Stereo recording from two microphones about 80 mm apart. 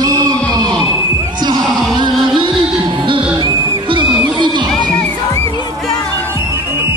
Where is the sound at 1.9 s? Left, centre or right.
Right.